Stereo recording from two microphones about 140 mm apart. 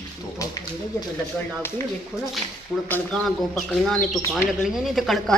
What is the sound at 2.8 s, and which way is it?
Speech, 15° left (ahead or behind).